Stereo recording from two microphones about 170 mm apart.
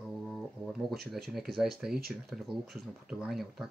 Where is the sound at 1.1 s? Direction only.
Centre (ahead or behind).